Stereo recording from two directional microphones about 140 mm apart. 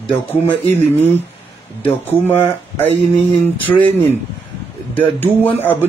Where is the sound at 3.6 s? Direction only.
10° left (ahead or behind).